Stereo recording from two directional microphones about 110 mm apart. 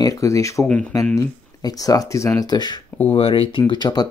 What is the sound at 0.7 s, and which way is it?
Speech, 10° left (ahead or behind).